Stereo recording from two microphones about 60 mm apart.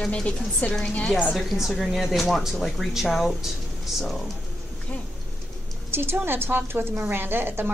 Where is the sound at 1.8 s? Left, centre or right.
Centre.